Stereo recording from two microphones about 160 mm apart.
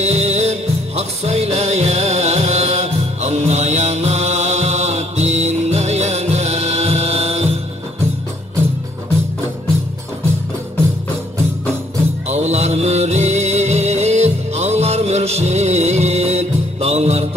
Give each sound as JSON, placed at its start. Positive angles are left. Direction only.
{"t": 0.0, "sound": "music", "side_deg": -45}
{"t": 12.3, "sound": "music", "side_deg": -45}